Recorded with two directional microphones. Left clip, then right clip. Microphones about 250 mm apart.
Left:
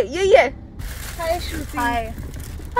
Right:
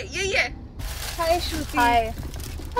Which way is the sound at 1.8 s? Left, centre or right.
Right.